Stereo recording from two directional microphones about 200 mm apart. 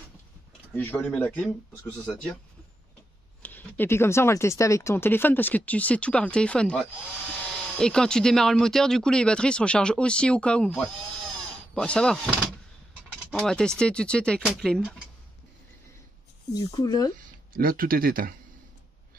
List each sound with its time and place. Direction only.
0.7 s speech: 10° left (ahead or behind)
3.4 s speech: 10° left (ahead or behind)
16.5 s speech: 20° left (ahead or behind)
17.6 s speech: 45° right (ahead or behind)